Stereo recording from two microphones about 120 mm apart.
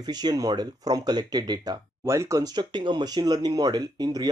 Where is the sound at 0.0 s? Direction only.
35° right (ahead or behind).